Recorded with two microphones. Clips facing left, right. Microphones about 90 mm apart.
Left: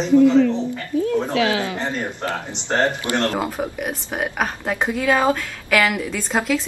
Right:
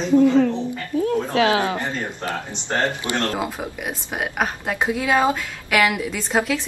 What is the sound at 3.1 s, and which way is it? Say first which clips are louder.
A woman's voice: left 2 dB; 20° right (ahead or behind).